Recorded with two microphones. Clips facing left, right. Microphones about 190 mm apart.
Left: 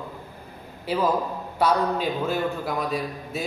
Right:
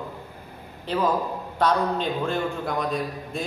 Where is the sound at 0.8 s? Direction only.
10° left (ahead or behind).